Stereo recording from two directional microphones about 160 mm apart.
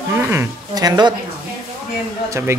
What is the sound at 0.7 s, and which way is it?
Speech, 25° right (ahead or behind).